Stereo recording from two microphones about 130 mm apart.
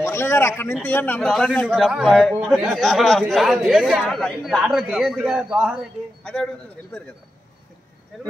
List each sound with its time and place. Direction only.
0.0 s a man's voice: 20° left (ahead or behind); by 5.8 s 5° right (ahead or behind)
6.2 s speech: 5° left (ahead or behind)